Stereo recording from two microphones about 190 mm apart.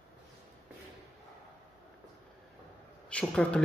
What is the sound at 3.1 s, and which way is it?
Speech, 5° left (ahead or behind).